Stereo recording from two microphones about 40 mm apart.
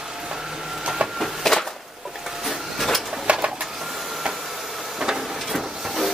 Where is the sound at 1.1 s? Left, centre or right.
Centre.